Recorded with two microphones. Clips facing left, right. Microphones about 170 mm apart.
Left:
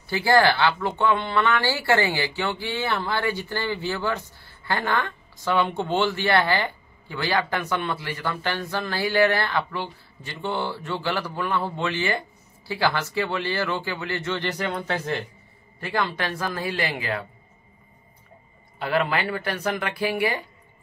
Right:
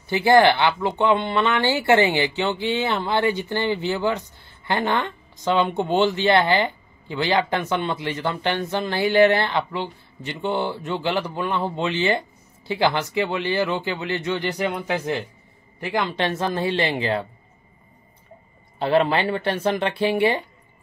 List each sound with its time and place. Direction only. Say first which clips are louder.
0.0 s speech: right 4 dB; 20° right (ahead or behind)
18.8 s speech: right 5 dB; 25° right (ahead or behind)